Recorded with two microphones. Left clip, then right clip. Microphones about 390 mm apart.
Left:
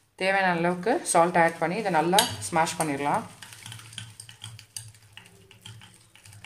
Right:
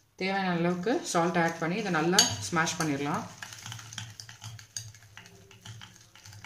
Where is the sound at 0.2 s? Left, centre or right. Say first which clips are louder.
Left 6 dB; centre.